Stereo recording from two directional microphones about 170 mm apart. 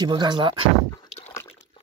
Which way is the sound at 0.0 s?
25° right (ahead or behind).